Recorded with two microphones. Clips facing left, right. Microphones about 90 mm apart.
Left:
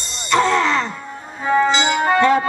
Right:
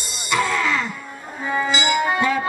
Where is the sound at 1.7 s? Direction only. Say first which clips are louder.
Left 3 dB; 10° right (ahead or behind).